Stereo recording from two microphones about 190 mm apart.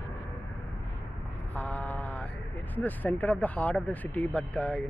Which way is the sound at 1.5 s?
10° left (ahead or behind).